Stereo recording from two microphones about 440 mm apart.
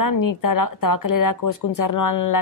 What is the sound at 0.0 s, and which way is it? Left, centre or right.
Speech, left.